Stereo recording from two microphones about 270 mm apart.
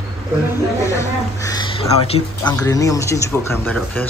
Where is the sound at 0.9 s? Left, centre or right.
Centre.